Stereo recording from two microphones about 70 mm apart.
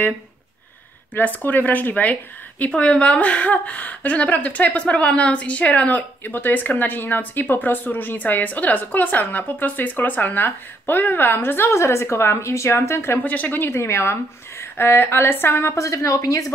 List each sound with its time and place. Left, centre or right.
1.1 s a woman's voice: left
13.2 s a woman's voice: left